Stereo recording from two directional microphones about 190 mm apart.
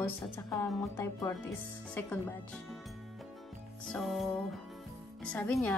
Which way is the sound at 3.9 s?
Centre (ahead or behind).